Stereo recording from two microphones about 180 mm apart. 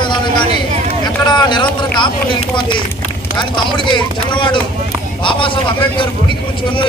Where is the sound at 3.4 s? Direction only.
25° left (ahead or behind).